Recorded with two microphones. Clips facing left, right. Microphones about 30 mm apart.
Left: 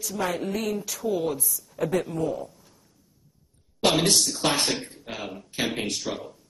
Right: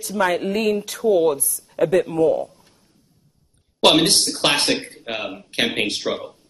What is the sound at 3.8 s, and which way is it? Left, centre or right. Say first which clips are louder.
A man's voice: right 6 dB; right.